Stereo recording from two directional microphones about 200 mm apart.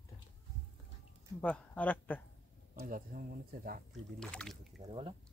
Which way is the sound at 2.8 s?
45° right (ahead or behind).